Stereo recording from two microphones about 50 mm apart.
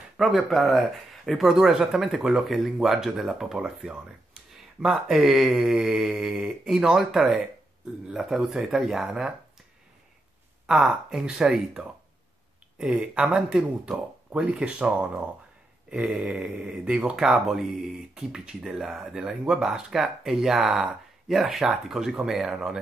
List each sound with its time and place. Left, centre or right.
0.2 s speech: centre
1.5 s speech: centre
10.7 s speech: centre
17.2 s speech: centre